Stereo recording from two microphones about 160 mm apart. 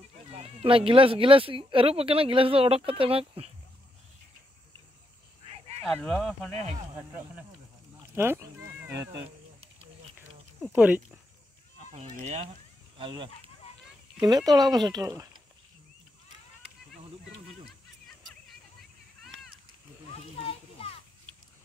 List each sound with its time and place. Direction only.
0.3 s speech: 40° right (ahead or behind)
5.9 s speech: 5° left (ahead or behind)
6.5 s speech: 45° right (ahead or behind)
8.1 s sheep: 15° right (ahead or behind)
10.7 s speech: 10° right (ahead or behind)
12.2 s speech: 45° right (ahead or behind)
12.9 s speech: 30° right (ahead or behind)
20.3 s children playing: 35° left (ahead or behind)